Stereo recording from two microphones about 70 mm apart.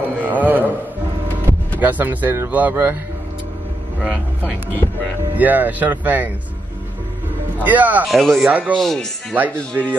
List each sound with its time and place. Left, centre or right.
0.2 s a sound: right
1.8 s speech: right
4.0 s speech: centre
7.6 s speech: right
8.1 s speech: centre
8.5 s speech: right
8.7 s speech: centre
9.3 s speech: right